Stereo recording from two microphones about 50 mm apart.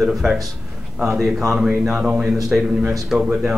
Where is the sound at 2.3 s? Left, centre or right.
Centre.